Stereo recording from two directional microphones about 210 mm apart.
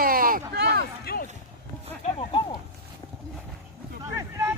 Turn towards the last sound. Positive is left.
turn(degrees=-15)  # may be behind; listen again after turning